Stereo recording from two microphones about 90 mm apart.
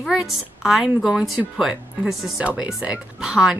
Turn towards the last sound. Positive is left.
turn(degrees=-10)  # may be behind; listen again after turning